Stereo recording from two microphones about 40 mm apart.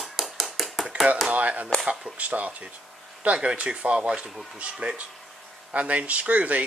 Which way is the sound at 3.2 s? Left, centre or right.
Right.